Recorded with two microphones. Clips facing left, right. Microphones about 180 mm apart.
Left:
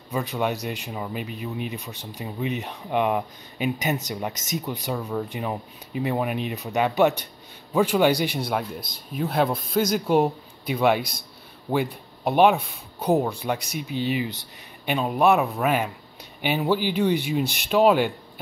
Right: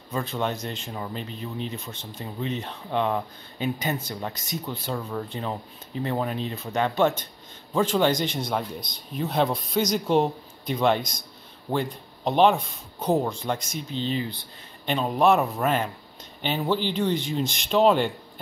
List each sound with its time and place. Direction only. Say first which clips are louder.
0.1 s speech: left 2 dB; 15° left (ahead or behind)
11.0 s a man's voice: left 2 dB; 60° left (ahead or behind)
11.7 s speech: left 2 dB; 10° left (ahead or behind)